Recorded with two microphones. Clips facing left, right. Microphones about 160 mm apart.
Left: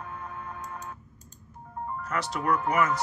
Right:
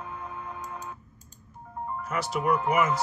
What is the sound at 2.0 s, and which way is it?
Speech, 5° right (ahead or behind).